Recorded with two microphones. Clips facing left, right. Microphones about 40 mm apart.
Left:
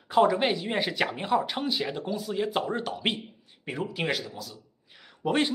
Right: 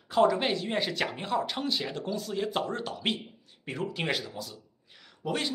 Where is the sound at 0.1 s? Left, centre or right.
Centre.